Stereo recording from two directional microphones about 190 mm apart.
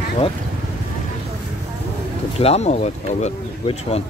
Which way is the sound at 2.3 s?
35° left (ahead or behind).